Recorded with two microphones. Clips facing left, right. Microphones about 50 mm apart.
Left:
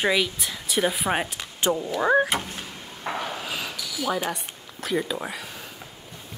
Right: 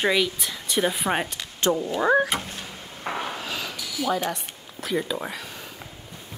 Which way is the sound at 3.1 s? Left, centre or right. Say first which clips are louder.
Even; centre.